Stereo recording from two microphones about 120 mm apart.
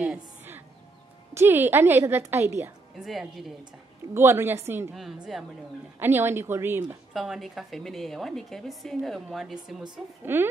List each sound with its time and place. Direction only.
0.0 s music: 15° right (ahead or behind)
1.3 s a woman's voice: 20° right (ahead or behind)
3.0 s a woman's voice: centre (ahead or behind)
4.1 s a woman's voice: 20° right (ahead or behind)
4.9 s a woman's voice: centre (ahead or behind)
5.9 s a woman's voice: 20° right (ahead or behind)
7.2 s a woman's voice: centre (ahead or behind)
10.2 s a woman's voice: 20° right (ahead or behind)